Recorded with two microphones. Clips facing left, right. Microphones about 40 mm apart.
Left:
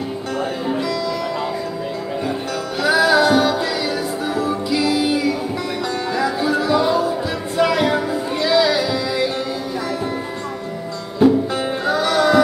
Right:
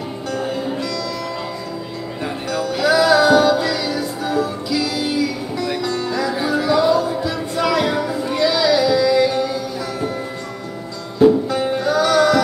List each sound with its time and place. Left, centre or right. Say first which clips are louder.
2.8 s music: right 1 dB; centre
6.4 s music: right 2 dB; centre
11.5 s music: right 2 dB; centre